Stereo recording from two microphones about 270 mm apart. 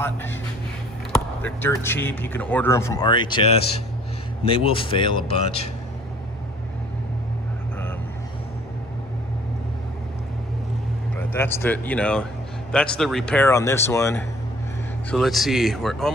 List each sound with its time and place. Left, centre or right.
0.0 s speech: centre
4.5 s speech: centre
11.1 s speech: centre